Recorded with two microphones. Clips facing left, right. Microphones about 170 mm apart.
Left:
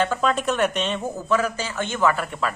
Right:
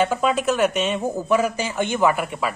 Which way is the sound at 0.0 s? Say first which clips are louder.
Right 2 dB; 10° right (ahead or behind).